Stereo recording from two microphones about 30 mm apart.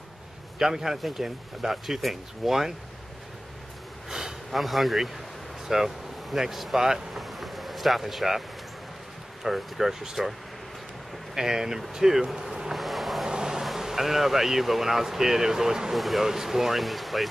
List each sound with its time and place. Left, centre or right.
0.6 s speech: centre
4.5 s speech: centre
7.2 s vehicle: centre
9.4 s speech: centre
11.3 s speech: centre
12.4 s a sound: right
12.7 s vehicle: centre
13.2 s a sound: right
13.6 s speech: centre
15.9 s speech: centre
16.3 s speech: centre